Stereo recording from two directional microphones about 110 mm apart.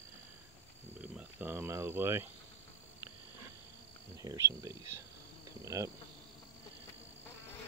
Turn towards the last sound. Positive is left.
turn(degrees=-30)  # may be behind; listen again after turning